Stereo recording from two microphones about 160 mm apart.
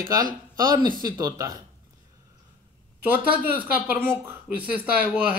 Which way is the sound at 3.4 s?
10° right (ahead or behind).